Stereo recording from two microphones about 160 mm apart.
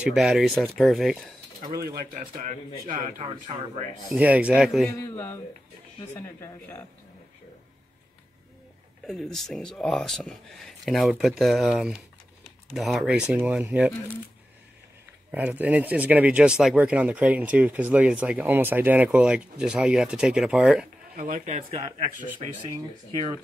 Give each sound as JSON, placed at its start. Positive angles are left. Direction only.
{"t": 0.0, "sound": "speech", "side_deg": -5}
{"t": 1.7, "sound": "speech", "side_deg": -20}
{"t": 2.9, "sound": "speech", "side_deg": -30}
{"t": 4.1, "sound": "speech", "side_deg": -10}
{"t": 4.9, "sound": "speech", "side_deg": 15}
{"t": 9.0, "sound": "speech", "side_deg": 5}
{"t": 15.3, "sound": "speech", "side_deg": -10}
{"t": 21.2, "sound": "speech", "side_deg": -50}
{"t": 23.1, "sound": "speech", "side_deg": -25}